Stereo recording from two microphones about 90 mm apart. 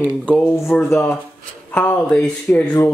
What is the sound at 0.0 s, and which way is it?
Speech, 15° left (ahead or behind).